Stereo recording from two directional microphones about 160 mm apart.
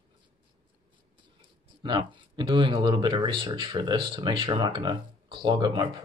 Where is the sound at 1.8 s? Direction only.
30° right (ahead or behind).